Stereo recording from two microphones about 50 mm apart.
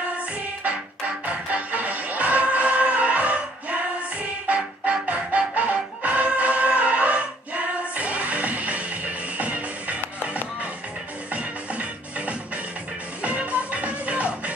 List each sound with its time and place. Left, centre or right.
1.2 s music: right